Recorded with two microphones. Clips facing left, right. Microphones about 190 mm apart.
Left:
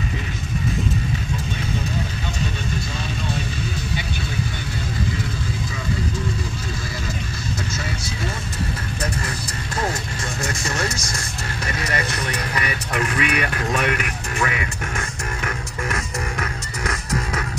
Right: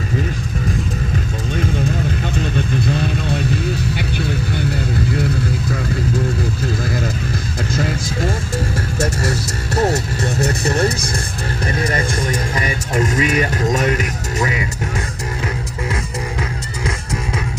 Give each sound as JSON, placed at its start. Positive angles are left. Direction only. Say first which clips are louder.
{"t": 9.8, "sound": "music", "louder": "right 9 dB", "side_deg": -40}
{"t": 12.1, "sound": "music", "louder": "right 6 dB", "side_deg": -50}
{"t": 12.5, "sound": "music", "louder": "right 4 dB", "side_deg": -25}
{"t": 13.2, "sound": "a sound", "louder": "right 5 dB", "side_deg": -40}
{"t": 13.7, "sound": "music", "louder": "right 4 dB", "side_deg": -40}
{"t": 15.4, "sound": "music", "louder": "right 3 dB", "side_deg": -25}